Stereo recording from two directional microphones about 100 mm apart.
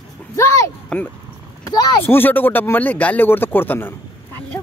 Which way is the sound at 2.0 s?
20° left (ahead or behind).